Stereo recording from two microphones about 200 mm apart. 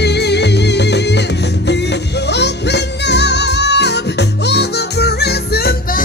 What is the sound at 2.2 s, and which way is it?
Music, 60° left (ahead or behind).